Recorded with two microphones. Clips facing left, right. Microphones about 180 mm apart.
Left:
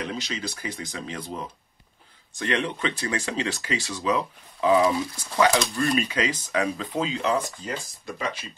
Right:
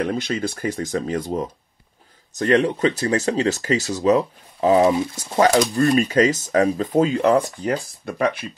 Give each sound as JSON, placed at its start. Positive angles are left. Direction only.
{"t": 0.0, "sound": "speech", "side_deg": -55}